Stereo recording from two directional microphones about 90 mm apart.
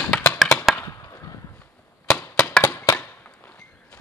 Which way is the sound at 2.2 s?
20° left (ahead or behind).